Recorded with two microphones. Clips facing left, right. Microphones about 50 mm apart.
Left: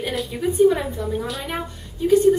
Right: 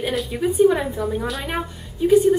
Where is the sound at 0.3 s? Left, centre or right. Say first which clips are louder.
Even; centre.